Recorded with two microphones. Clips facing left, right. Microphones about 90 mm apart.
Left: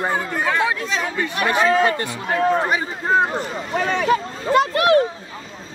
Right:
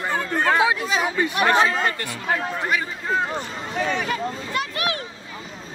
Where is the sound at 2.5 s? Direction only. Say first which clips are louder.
Left 4 dB; 25° left (ahead or behind).